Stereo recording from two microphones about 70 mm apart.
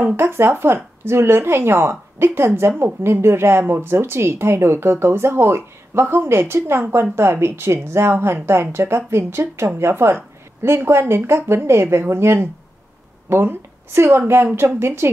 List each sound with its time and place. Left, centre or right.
0.1 s speech: right